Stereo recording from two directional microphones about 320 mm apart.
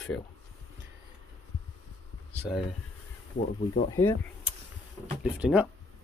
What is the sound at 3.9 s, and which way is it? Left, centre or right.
Speech, centre.